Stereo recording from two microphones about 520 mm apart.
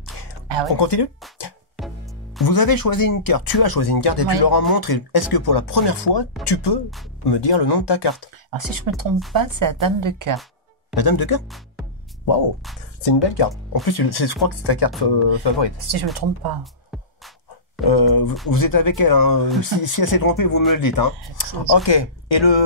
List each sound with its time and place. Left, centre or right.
0.7 s speech: left
1.8 s music: centre
2.4 s speech: left
8.5 s a woman's voice: right
11.0 s speech: left
11.4 s speech: centre
13.0 s speech: left
15.9 s speech: right
17.8 s speech: left